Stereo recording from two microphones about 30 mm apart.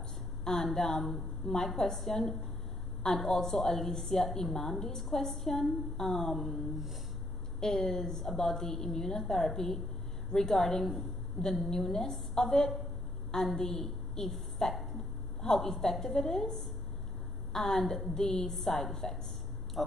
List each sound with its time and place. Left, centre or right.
0.7 s a woman's voice: centre
7.6 s a woman's voice: centre